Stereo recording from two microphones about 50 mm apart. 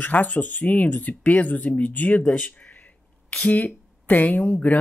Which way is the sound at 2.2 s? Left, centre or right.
Left.